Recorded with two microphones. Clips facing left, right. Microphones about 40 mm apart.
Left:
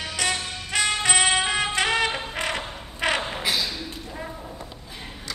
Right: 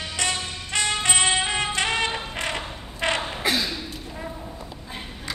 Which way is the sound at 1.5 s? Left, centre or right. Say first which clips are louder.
Left 1 dB; centre.